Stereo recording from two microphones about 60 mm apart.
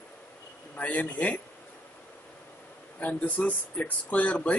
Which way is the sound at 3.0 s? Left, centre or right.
Left.